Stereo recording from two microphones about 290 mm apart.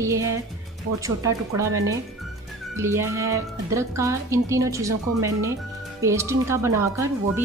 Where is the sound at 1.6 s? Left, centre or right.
Centre.